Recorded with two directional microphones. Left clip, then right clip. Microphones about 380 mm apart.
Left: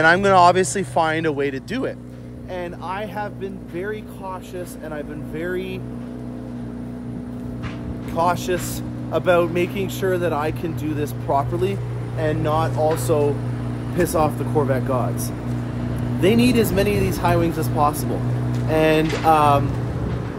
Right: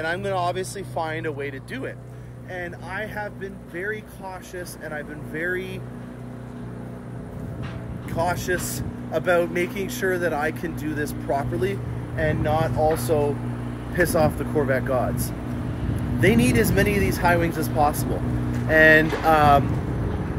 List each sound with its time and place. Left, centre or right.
0.0 s speech: centre
2.5 s speech: centre
4.9 s speech: centre
8.1 s speech: centre
12.2 s speech: centre
16.2 s speech: centre